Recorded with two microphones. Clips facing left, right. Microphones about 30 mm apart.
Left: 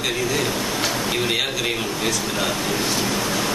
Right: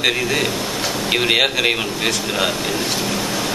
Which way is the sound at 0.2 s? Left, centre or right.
Right.